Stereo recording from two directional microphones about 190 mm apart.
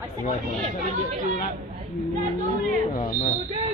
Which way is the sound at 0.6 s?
40° right (ahead or behind).